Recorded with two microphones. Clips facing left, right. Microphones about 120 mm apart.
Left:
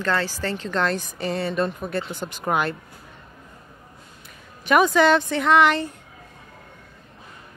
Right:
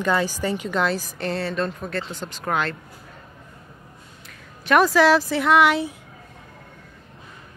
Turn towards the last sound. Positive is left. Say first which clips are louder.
# even
turn(degrees=-5)  # may be behind; listen again after turning